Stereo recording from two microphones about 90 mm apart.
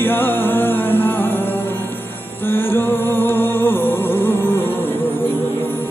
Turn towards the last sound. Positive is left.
turn(degrees=25)  # may be behind; listen again after turning